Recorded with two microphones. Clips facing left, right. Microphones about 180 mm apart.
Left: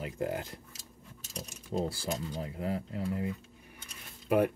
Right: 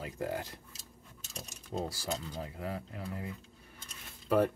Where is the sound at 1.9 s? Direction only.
25° left (ahead or behind).